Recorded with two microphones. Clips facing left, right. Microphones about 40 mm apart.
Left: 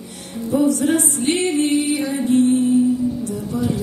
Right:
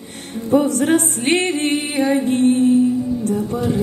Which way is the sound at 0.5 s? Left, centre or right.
Right.